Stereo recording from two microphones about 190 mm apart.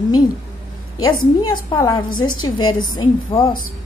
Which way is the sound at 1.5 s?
20° left (ahead or behind).